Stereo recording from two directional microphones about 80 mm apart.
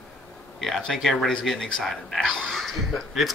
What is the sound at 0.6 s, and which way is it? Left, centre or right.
Speech, centre.